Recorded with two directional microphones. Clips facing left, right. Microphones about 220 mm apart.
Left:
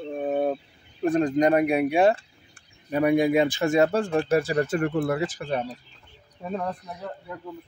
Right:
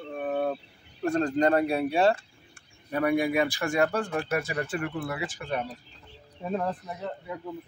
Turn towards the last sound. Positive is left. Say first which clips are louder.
# right 1 dB
turn(degrees=-5)  # may be behind; listen again after turning